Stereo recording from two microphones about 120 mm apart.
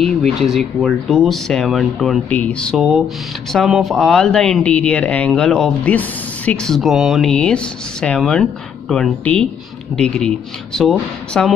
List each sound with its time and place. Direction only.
0.0 s speech: centre (ahead or behind)